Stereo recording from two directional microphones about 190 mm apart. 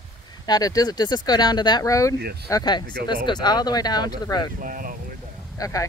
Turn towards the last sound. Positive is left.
turn(degrees=15)  # may be behind; listen again after turning